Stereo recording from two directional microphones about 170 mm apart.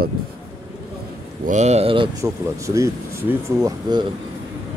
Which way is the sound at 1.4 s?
40° right (ahead or behind).